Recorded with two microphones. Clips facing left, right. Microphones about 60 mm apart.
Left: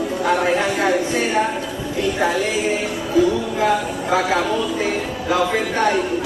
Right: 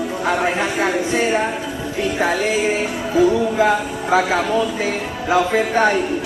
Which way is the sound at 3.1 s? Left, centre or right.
Centre.